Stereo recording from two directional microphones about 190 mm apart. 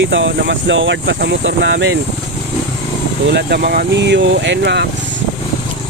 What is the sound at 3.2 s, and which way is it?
Speech, 60° right (ahead or behind).